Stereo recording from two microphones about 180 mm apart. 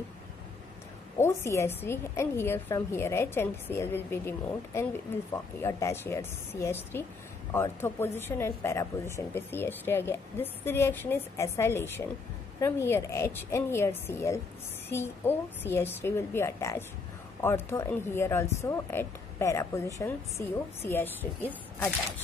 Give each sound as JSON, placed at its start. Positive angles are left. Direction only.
{"t": 1.1, "sound": "a woman's voice", "side_deg": 15}